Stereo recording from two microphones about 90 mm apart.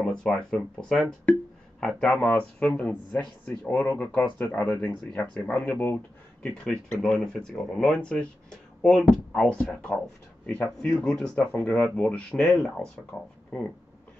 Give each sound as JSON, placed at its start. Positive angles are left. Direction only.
{"t": 0.0, "sound": "speech", "side_deg": 5}